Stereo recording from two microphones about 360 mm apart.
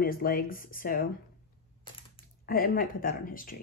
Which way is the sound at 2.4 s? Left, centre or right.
Left.